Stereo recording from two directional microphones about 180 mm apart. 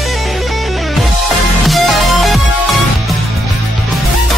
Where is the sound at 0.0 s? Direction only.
Centre (ahead or behind).